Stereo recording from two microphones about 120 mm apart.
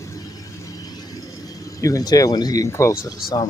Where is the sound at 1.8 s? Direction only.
30° left (ahead or behind).